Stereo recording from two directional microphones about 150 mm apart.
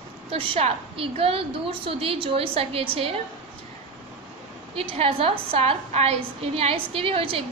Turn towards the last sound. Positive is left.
turn(degrees=-40)  # may be behind; listen again after turning